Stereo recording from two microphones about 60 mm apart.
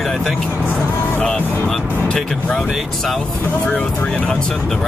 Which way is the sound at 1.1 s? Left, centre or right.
Centre.